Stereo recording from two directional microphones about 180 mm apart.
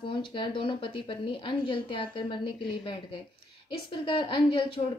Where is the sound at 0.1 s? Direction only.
30° left (ahead or behind).